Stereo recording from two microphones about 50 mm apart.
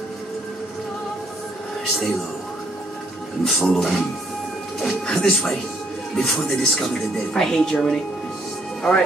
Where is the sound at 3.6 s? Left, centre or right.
Centre.